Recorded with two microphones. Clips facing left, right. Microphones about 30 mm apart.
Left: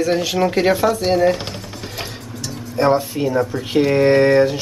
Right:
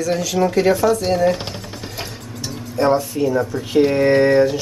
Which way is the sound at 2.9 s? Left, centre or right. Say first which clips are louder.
Even; left.